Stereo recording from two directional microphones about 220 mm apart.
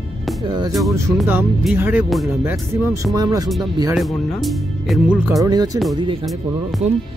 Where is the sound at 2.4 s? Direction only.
15° right (ahead or behind).